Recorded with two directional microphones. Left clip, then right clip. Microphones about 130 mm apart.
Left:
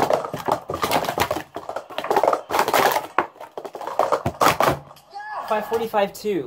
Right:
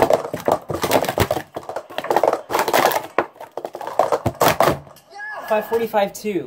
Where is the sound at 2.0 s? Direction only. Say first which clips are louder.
Right 1 dB; 15° right (ahead or behind).